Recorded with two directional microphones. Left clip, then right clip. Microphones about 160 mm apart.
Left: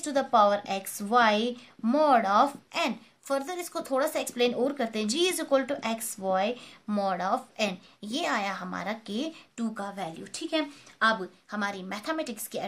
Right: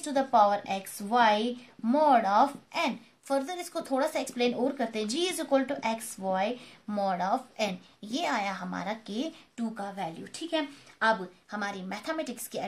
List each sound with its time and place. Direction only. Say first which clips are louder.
0.0 s a woman's voice: left 1 dB; 40° left (ahead or behind)